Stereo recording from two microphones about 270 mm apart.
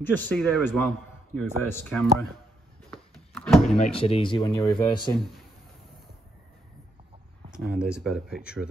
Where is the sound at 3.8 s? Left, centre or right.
Left.